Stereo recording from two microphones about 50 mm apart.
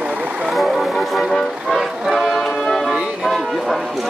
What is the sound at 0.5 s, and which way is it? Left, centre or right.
Music, centre.